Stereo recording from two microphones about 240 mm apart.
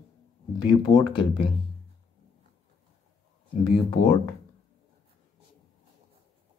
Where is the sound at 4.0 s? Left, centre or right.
Left.